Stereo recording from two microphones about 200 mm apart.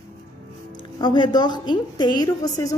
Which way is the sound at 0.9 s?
25° left (ahead or behind).